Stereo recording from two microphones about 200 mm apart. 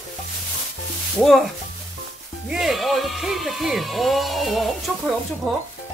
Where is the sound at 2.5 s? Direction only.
Centre (ahead or behind).